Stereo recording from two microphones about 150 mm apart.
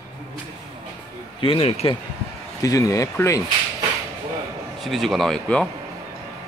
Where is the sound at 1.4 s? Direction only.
35° left (ahead or behind).